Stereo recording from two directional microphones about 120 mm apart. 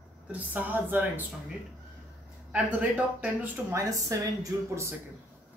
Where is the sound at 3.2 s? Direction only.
20° right (ahead or behind).